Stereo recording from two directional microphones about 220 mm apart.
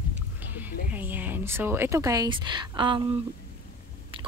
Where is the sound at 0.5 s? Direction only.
10° right (ahead or behind).